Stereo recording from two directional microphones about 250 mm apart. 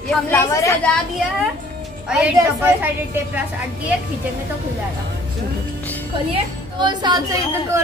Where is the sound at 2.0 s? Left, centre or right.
Centre.